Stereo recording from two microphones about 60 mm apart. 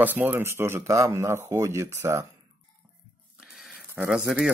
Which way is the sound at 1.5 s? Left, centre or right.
Right.